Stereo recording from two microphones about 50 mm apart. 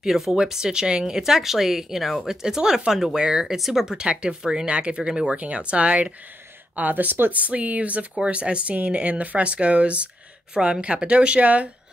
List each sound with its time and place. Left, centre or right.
0.0 s speech: centre
4.6 s speech: right
6.7 s speech: right